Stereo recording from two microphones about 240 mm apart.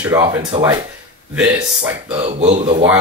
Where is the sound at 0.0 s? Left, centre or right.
Centre.